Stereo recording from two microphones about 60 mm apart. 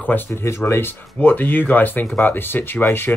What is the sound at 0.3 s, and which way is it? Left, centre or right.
Speech, left.